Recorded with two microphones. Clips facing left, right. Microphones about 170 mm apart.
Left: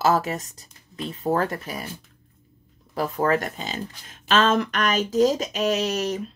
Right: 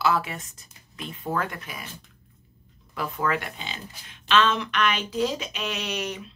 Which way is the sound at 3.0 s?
40° left (ahead or behind).